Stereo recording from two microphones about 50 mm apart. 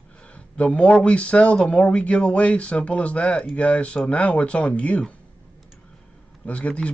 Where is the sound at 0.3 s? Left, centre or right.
Left.